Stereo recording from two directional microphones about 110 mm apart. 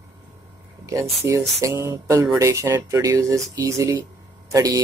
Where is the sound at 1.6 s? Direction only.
25° right (ahead or behind).